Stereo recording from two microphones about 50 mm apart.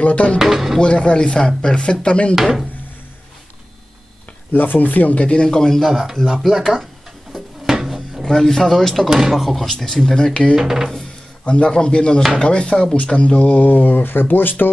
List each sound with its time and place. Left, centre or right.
0.0 s speech: left
0.4 s speech: centre
0.7 s speech: left
2.3 s speech: centre
4.5 s speech: left; by 5.9 s centre
6.4 s speech: centre
7.3 s drawer open or close: centre
8.2 s speech: centre
9.1 s speech: centre
10.1 s speech: centre
10.5 s speech: centre
11.4 s speech: left